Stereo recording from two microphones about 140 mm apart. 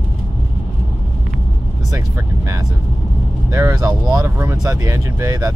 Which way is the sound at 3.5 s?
20° right (ahead or behind).